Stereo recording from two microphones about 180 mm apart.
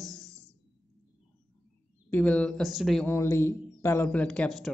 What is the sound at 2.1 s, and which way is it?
Speech, 5° left (ahead or behind).